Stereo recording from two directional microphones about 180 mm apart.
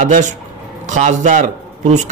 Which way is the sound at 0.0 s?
45° right (ahead or behind).